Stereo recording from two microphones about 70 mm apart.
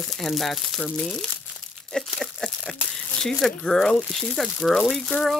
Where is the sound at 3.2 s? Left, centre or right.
Centre.